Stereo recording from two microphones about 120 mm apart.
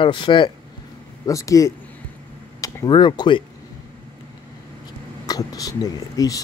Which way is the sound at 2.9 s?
40° left (ahead or behind).